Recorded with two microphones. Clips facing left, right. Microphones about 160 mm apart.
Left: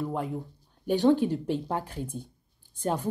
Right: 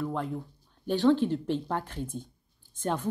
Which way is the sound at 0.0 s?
10° left (ahead or behind).